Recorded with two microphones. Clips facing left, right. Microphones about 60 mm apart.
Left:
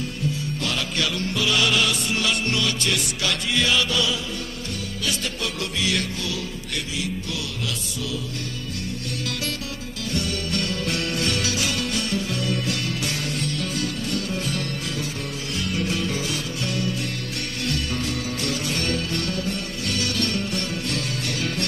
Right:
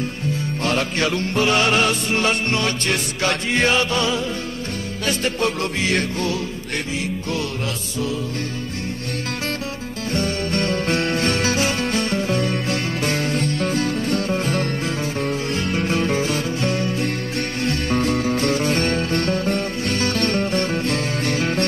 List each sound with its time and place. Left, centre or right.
0.6 s music: right
10.1 s music: right